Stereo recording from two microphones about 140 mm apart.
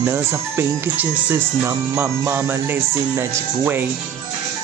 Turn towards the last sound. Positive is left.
turn(degrees=-15)  # may be behind; listen again after turning